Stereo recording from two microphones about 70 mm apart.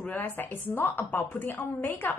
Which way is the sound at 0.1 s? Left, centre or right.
Left.